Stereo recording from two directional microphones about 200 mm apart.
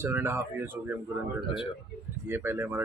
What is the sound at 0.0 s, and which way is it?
Speech, 10° right (ahead or behind).